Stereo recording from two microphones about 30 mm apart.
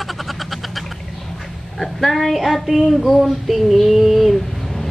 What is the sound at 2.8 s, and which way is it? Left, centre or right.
Child singing, centre.